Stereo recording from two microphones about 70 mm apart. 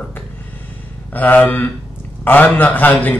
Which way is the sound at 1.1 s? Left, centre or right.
Left.